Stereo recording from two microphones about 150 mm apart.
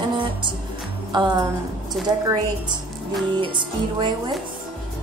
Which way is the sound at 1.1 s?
30° right (ahead or behind).